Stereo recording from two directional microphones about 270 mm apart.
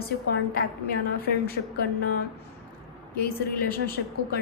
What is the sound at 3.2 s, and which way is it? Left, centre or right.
Speech, left.